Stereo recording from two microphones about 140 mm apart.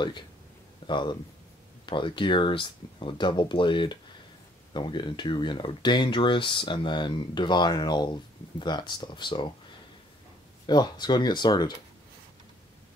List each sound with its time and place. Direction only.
0.8 s speech: 35° left (ahead or behind)
10.7 s speech: 30° left (ahead or behind)